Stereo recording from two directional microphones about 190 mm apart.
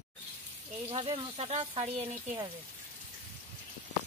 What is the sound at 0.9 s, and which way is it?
Speech, 30° right (ahead or behind).